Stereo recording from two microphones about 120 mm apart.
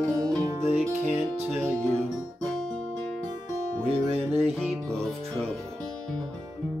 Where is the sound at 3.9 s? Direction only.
55° right (ahead or behind).